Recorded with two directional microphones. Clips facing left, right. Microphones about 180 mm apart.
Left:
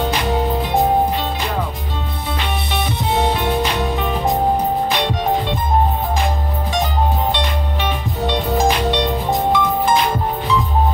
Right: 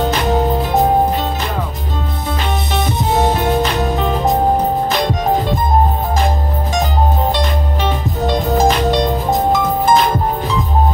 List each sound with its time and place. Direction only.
2.7 s music: 45° right (ahead or behind)
8.3 s music: 40° right (ahead or behind)